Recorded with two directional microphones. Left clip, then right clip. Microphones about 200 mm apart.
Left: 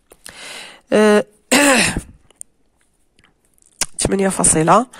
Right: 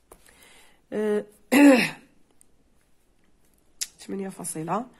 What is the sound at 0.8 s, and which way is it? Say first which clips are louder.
Speech: left 14 dB; 50° left (ahead or behind).